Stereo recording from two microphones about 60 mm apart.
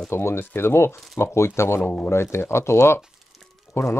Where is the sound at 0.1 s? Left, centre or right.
Left.